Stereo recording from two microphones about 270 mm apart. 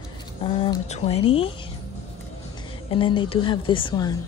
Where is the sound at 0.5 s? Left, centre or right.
Left.